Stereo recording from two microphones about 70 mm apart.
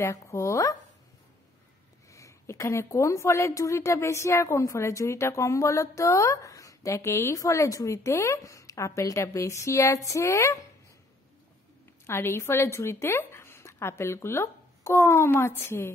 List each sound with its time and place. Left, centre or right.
0.0 s a woman's voice: left
2.0 s a woman's voice: left
12.1 s a woman's voice: left